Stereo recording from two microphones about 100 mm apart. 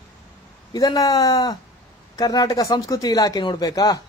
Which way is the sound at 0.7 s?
40° left (ahead or behind).